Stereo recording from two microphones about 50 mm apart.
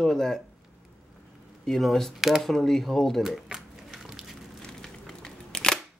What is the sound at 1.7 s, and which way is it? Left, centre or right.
Speech, centre.